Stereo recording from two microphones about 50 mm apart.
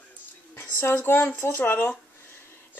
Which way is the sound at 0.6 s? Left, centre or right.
Left.